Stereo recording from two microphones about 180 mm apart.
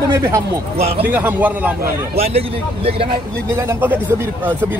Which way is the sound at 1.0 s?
10° right (ahead or behind).